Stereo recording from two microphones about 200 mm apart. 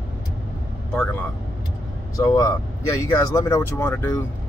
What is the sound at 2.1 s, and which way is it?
Speech, 15° left (ahead or behind).